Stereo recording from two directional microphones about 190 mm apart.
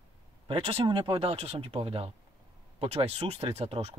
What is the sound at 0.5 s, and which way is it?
Speech, 30° right (ahead or behind).